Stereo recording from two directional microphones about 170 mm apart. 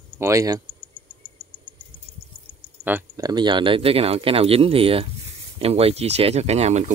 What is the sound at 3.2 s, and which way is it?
Speech, 25° right (ahead or behind).